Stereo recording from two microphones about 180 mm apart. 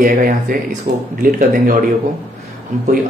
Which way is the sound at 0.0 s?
50° right (ahead or behind).